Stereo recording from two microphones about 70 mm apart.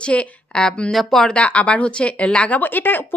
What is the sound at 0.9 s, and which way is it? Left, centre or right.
Speech, centre.